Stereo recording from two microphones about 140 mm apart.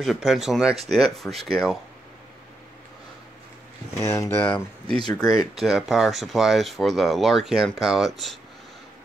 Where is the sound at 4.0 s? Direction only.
20° left (ahead or behind).